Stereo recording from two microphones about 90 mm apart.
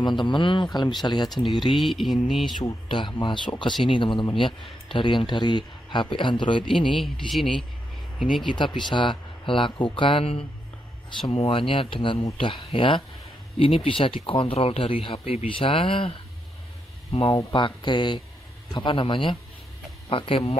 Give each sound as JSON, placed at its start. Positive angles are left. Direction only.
{"t": 0.0, "sound": "speech", "side_deg": 60}
{"t": 0.7, "sound": "speech", "side_deg": 55}
{"t": 1.7, "sound": "mantra", "side_deg": 0}
{"t": 2.9, "sound": "speech", "side_deg": 60}
{"t": 7.0, "sound": "mantra", "side_deg": 0}
{"t": 8.5, "sound": "a man's voice", "side_deg": 60}
{"t": 13.6, "sound": "speech", "side_deg": 85}
{"t": 17.3, "sound": "a man's voice", "side_deg": 55}
{"t": 20.1, "sound": "speech", "side_deg": 80}